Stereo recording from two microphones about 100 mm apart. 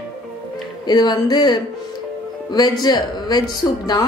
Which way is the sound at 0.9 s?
45° left (ahead or behind).